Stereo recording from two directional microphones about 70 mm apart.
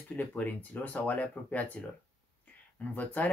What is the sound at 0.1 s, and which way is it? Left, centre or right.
Speech, left.